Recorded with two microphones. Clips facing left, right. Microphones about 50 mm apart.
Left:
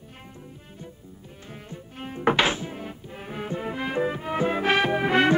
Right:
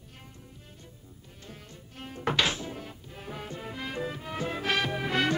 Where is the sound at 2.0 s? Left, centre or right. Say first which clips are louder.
Left 6 dB; left.